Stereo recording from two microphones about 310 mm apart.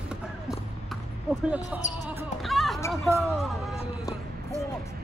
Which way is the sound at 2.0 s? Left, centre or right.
Centre.